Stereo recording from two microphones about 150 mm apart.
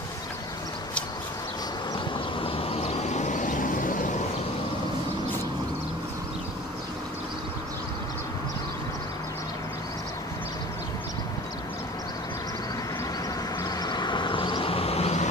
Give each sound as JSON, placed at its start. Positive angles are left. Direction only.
{"t": 2.4, "sound": "vehicle", "side_deg": 40}
{"t": 13.6, "sound": "vehicle", "side_deg": 25}